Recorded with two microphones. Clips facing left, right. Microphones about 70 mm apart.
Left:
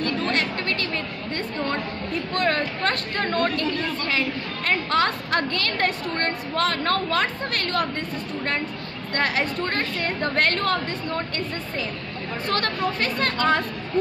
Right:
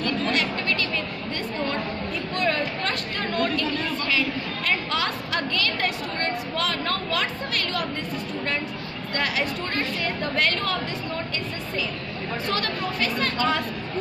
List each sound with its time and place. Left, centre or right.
0.0 s chatter: left
2.3 s chatter: left
9.1 s a woman's voice: left